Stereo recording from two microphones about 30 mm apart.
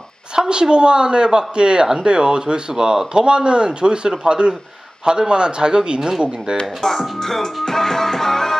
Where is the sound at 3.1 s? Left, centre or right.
Right.